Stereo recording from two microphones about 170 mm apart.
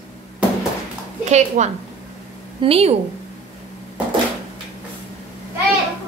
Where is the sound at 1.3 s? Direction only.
40° right (ahead or behind).